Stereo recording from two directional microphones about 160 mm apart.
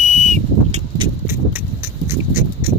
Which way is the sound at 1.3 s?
15° right (ahead or behind).